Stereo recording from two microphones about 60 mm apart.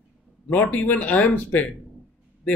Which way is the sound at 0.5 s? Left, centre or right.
Left.